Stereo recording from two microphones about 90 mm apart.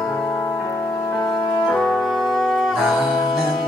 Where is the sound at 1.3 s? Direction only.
5° left (ahead or behind).